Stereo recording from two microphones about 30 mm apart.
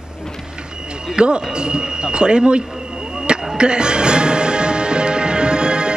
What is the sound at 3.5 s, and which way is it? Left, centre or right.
Music, right.